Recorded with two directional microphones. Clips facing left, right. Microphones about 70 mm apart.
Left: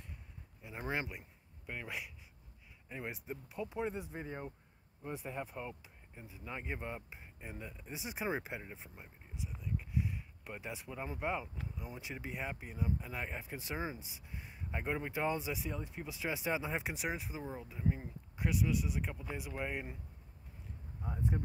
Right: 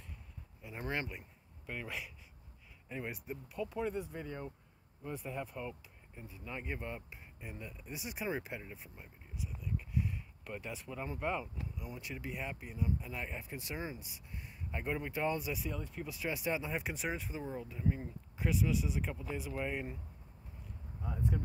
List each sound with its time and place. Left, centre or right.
0.7 s speech: centre
3.3 s speech: left
11.8 s speech: left
16.9 s speech: centre
21.0 s speech: left